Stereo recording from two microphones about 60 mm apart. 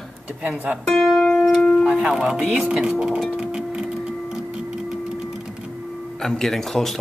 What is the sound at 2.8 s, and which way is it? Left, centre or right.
Speech, centre.